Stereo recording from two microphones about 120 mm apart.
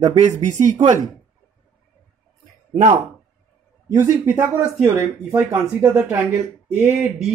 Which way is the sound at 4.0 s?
30° right (ahead or behind).